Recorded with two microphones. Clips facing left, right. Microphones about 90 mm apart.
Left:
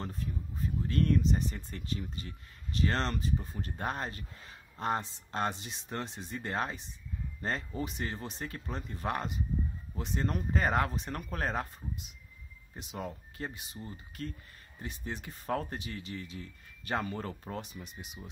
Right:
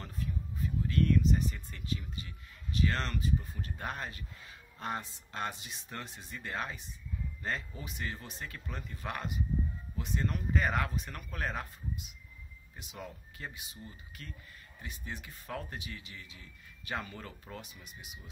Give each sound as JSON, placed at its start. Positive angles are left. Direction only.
{"t": 0.0, "sound": "speech", "side_deg": 30}